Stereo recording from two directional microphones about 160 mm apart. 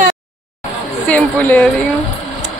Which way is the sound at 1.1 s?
10° left (ahead or behind).